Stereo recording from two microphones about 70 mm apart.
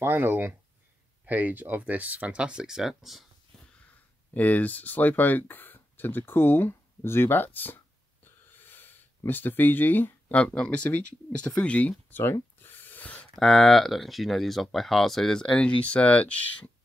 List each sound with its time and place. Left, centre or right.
0.0 s speech: right; by 3.3 s centre
4.3 s speech: left
8.5 s a sound: left
10.4 s speech: centre
12.1 s speech: left
12.5 s a sound: left
13.4 s speech: centre; by 16.7 s left